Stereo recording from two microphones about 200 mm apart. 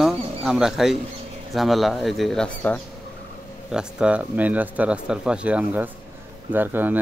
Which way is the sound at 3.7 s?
5° right (ahead or behind).